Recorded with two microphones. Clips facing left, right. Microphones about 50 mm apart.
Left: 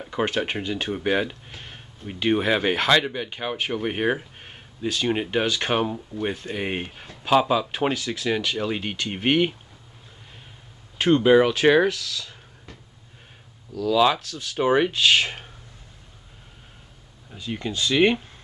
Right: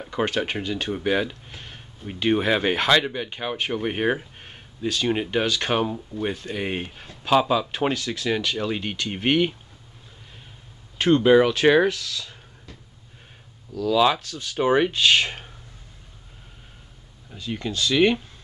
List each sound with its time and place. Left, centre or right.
0.0 s a sound: centre
0.5 s speech: centre
11.0 s speech: centre
13.7 s speech: centre
17.5 s speech: centre